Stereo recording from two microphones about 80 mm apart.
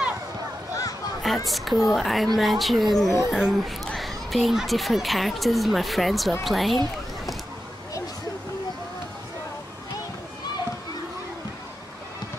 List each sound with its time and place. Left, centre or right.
1.2 s a child's voice: centre